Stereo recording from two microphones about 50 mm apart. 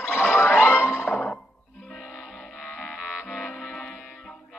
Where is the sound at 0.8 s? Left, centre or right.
Left.